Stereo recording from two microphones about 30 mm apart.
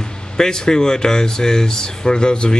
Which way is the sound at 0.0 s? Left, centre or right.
Left.